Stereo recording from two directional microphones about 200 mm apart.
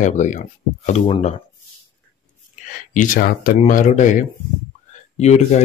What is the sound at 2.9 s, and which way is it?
Speech, 40° left (ahead or behind).